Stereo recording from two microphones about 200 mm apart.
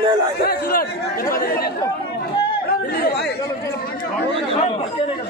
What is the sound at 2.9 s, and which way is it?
Speech, 50° left (ahead or behind).